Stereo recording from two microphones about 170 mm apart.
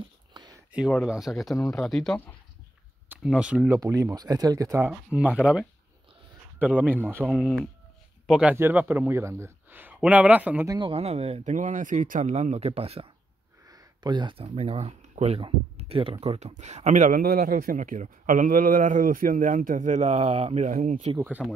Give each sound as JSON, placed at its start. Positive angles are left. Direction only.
{"t": 0.3, "sound": "a sound", "side_deg": -25}
{"t": 0.7, "sound": "a sound", "side_deg": -5}
{"t": 1.0, "sound": "speech", "side_deg": 0}
{"t": 3.1, "sound": "speech", "side_deg": -5}
{"t": 10.7, "sound": "speech", "side_deg": -30}
{"t": 13.7, "sound": "speech", "side_deg": -25}
{"t": 21.2, "sound": "speech", "side_deg": -10}